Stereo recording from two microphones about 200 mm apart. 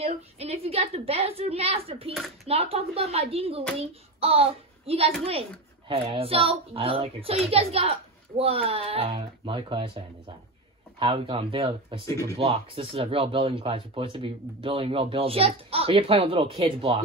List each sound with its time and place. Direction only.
0.0 s a child's voice: 30° right (ahead or behind)